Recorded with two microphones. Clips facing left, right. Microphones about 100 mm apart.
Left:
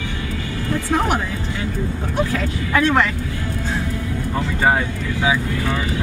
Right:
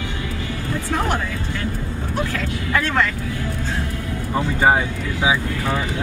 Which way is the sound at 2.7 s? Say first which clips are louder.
Left 3 dB; 15° left (ahead or behind).